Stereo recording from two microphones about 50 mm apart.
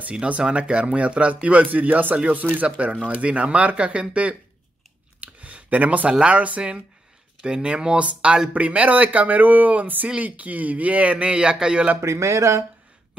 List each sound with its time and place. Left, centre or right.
0.1 s speech: right
2.1 s speech: right
5.2 s a sound: right
6.1 s speech: right
12.0 s speech: right